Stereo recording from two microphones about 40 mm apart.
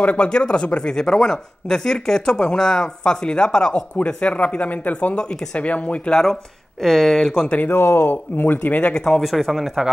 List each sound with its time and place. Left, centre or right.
0.0 s speech: left
0.9 s speech: centre; by 6.1 s left
6.8 s speech: centre
7.2 s speech: left
7.7 s a man's voice: left
8.9 s speech: centre
9.2 s speech: centre